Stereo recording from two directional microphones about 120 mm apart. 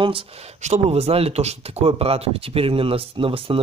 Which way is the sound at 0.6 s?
65° right (ahead or behind).